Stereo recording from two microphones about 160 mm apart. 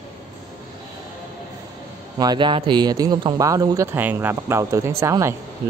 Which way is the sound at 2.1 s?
25° right (ahead or behind).